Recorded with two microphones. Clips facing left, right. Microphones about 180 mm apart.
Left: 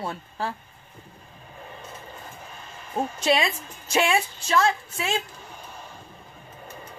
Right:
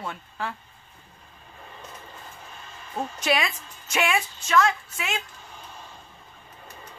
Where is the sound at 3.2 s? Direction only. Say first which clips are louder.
Left 2 dB; 30° left (ahead or behind).